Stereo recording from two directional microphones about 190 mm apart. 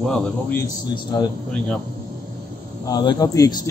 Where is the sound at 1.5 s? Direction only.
5° left (ahead or behind).